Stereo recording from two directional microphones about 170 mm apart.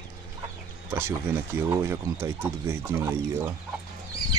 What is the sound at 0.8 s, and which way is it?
Speech, 15° right (ahead or behind).